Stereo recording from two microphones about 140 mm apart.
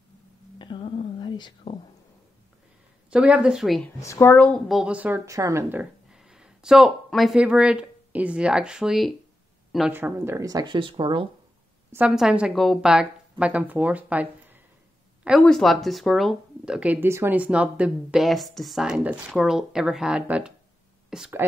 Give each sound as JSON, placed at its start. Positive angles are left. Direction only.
{"t": 0.6, "sound": "whispering", "side_deg": 35}
{"t": 3.1, "sound": "a woman's voice", "side_deg": -10}
{"t": 4.0, "sound": "a woman's voice", "side_deg": 20}
{"t": 9.7, "sound": "a sound", "side_deg": 0}
{"t": 9.9, "sound": "speech", "side_deg": -15}
{"t": 12.1, "sound": "a woman's voice", "side_deg": -5}
{"t": 15.4, "sound": "speech", "side_deg": 0}